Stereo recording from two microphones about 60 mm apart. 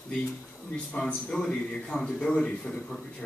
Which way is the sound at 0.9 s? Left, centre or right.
Centre.